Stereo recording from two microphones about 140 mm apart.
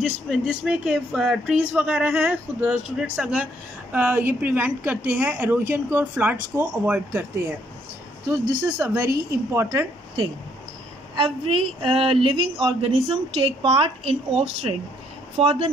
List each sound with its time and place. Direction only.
0.3 s a woman's voice: 5° right (ahead or behind)
8.3 s a woman's voice: 20° right (ahead or behind)
11.1 s a woman's voice: 35° right (ahead or behind)